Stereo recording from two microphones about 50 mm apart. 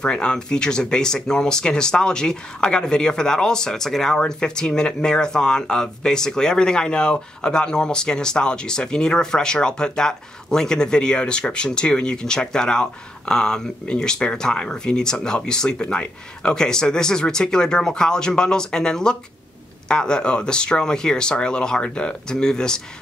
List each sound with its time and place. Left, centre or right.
0.0 s speech: centre